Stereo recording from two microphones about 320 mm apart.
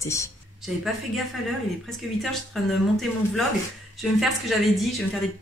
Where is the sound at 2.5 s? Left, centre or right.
Centre.